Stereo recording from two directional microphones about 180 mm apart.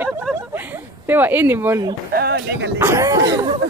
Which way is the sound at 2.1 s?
60° right (ahead or behind).